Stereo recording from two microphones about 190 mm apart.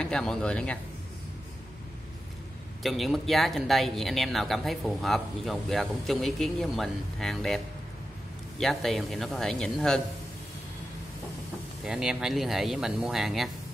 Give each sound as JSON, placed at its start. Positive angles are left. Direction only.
{"t": 0.0, "sound": "speech", "side_deg": 5}
{"t": 2.8, "sound": "speech", "side_deg": 0}
{"t": 11.8, "sound": "speech", "side_deg": -5}